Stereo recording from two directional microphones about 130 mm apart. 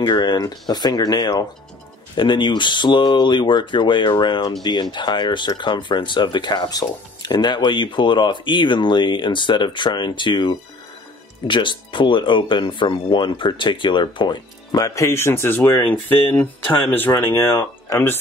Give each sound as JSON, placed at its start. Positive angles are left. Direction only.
{"t": 0.0, "sound": "speech", "side_deg": 35}